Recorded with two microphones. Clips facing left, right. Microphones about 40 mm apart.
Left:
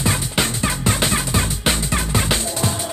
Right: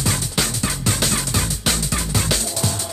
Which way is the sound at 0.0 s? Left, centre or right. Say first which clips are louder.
Left 2 dB; left.